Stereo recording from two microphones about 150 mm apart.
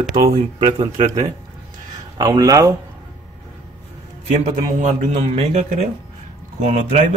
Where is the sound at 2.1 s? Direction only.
25° right (ahead or behind).